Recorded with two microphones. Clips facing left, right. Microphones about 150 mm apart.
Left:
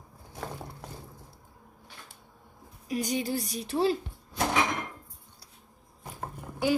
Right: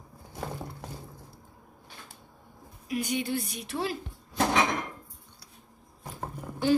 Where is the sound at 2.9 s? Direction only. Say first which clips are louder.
Even; 40° left (ahead or behind).